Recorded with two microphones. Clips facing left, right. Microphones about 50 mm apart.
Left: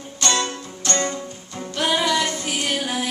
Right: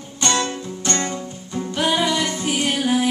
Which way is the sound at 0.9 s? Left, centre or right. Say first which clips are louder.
Even; centre.